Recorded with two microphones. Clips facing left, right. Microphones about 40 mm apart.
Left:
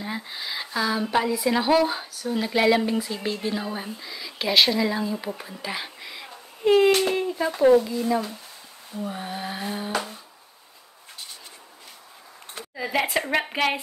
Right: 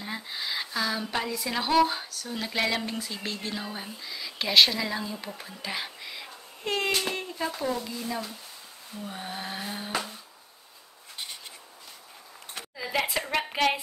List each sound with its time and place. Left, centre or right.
0.0 s a sound: centre
1.1 s speech: centre
5.6 s whispering: centre
7.2 s speech: centre
9.0 s a sound: centre
12.7 s a woman's voice: centre